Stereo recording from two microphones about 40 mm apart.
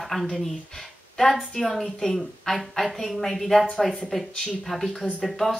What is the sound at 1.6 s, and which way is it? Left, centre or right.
Speech, centre.